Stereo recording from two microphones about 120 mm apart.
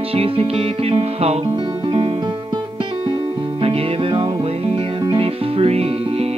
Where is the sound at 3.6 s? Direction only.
50° right (ahead or behind).